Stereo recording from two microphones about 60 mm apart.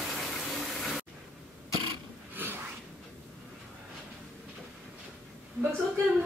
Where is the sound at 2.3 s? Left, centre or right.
Right.